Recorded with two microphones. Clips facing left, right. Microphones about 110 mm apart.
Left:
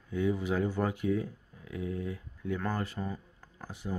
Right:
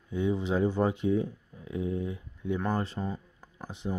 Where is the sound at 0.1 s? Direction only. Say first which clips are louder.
Right 2 dB; 25° right (ahead or behind).